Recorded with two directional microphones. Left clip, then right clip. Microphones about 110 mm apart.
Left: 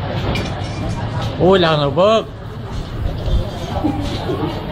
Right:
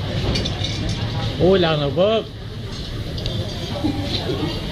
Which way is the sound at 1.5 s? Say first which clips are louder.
Left 5 dB; 35° left (ahead or behind).